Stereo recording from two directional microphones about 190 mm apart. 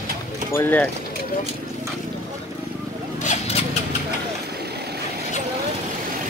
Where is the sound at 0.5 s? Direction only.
10° left (ahead or behind).